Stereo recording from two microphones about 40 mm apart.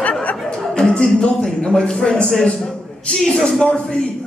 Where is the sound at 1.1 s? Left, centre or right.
Left.